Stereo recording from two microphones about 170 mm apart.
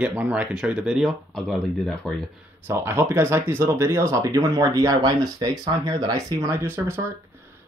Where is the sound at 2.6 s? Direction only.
15° right (ahead or behind).